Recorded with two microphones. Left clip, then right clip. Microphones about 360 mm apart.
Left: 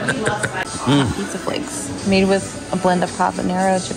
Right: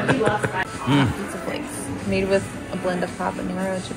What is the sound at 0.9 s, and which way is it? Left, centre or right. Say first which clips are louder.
Speech: left 4 dB; centre.